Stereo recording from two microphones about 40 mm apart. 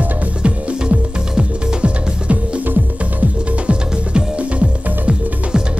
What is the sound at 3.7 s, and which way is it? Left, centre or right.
Music, right.